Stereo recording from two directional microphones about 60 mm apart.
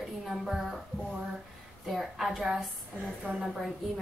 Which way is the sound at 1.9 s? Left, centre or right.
Centre.